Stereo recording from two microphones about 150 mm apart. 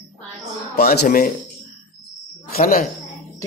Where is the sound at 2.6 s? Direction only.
70° left (ahead or behind).